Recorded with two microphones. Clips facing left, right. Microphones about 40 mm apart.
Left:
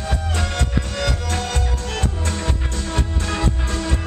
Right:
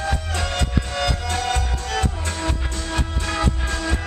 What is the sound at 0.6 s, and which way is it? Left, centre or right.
Music, right.